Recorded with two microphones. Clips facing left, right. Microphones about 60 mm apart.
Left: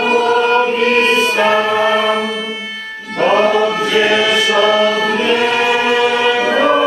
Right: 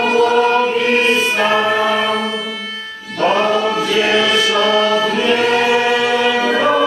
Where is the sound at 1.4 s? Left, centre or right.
Centre.